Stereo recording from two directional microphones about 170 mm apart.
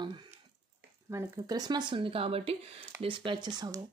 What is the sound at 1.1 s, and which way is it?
Speech, 20° right (ahead or behind).